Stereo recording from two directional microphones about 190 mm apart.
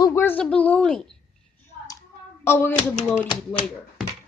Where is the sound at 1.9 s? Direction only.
10° left (ahead or behind).